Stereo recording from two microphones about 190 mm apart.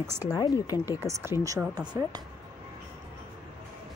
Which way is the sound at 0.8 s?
10° right (ahead or behind).